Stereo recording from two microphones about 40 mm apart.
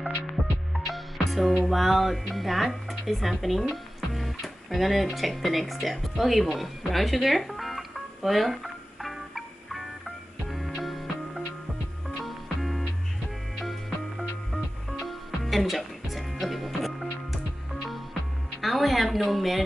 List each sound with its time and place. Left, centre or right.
0.8 s music: centre
1.6 s speech: centre
9.0 s music: centre
18.6 s a sound: centre